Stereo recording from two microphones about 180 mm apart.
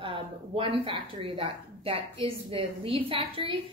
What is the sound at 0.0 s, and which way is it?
A woman's voice, 30° right (ahead or behind).